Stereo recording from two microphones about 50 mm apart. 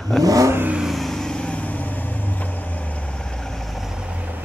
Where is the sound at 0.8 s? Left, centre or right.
Centre; by 1.8 s left.